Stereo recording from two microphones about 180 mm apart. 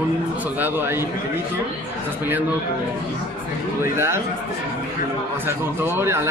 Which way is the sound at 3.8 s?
15° right (ahead or behind).